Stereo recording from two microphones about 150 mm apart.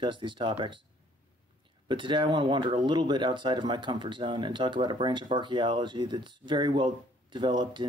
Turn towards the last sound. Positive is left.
turn(degrees=-30)  # may be behind; listen again after turning